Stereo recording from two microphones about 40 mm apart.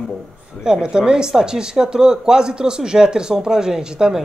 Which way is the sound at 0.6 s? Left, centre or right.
Right.